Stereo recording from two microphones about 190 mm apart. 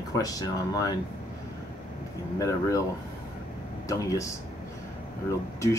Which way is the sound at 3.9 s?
15° left (ahead or behind).